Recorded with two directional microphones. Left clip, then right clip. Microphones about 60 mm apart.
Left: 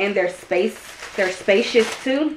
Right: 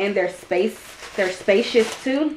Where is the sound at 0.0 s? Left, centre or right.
Right.